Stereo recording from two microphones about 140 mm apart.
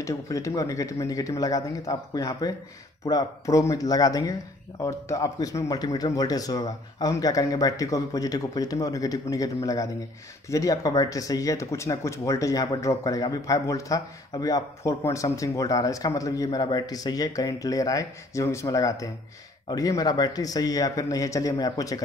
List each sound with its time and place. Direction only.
0.0 s speech: 20° left (ahead or behind)